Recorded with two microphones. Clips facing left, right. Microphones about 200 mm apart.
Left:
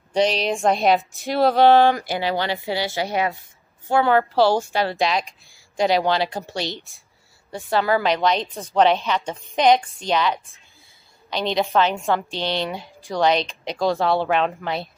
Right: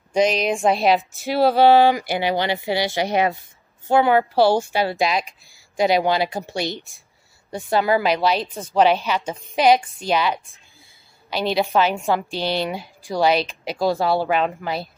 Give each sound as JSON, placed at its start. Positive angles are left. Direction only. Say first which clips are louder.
{"t": 0.4, "sound": "speech", "louder": "right 1 dB", "side_deg": 0}
{"t": 2.0, "sound": "a woman's voice", "louder": "right 2 dB", "side_deg": -15}